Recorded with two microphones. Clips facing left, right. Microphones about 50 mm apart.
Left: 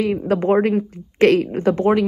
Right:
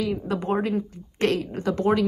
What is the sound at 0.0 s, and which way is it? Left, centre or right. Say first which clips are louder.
A woman's voice: left 8 dB; left.